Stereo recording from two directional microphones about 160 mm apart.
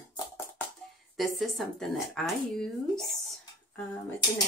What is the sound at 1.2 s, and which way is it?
Speech, centre (ahead or behind).